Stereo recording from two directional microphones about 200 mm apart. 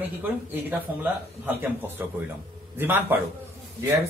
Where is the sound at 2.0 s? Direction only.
10° right (ahead or behind).